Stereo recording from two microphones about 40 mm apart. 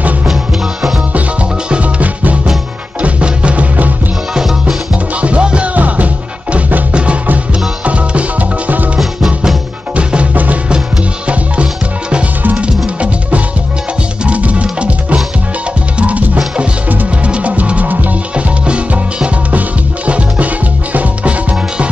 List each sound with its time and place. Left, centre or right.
1.7 s music: right
4.9 s music: right
5.8 s music: right
6.9 s music: right
9.9 s music: right
18.3 s music: right